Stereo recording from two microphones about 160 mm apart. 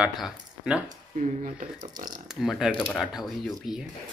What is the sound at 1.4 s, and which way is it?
Speech, 55° right (ahead or behind).